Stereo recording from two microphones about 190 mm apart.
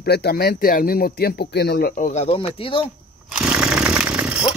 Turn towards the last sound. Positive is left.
turn(degrees=-5)  # may be behind; listen again after turning